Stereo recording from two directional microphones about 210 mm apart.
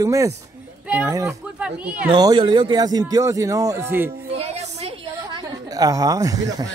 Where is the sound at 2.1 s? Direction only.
20° right (ahead or behind).